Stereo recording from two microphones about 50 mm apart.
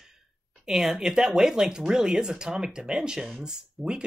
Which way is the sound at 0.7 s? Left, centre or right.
Centre.